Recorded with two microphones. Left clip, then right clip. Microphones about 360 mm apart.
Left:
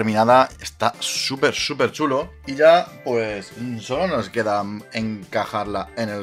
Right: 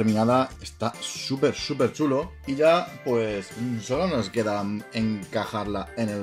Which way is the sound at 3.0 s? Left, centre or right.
Left.